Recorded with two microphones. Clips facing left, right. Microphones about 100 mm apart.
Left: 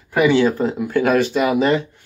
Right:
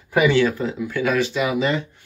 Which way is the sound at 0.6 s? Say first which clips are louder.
Left 5 dB; 45° left (ahead or behind).